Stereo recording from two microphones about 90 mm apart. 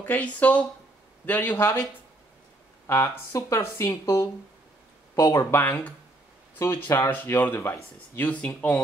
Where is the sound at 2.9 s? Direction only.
30° left (ahead or behind).